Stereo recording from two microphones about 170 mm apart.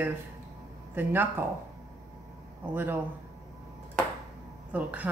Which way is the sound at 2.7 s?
10° right (ahead or behind).